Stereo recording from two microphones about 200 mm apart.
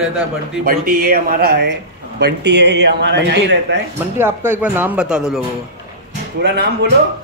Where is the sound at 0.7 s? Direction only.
45° right (ahead or behind).